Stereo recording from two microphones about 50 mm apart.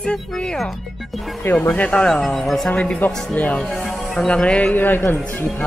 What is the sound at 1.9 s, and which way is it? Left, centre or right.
Speech, centre.